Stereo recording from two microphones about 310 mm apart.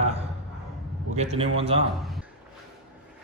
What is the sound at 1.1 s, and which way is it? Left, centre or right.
Speech, centre.